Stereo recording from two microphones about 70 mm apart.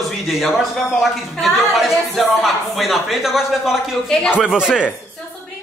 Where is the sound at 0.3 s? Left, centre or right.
Centre.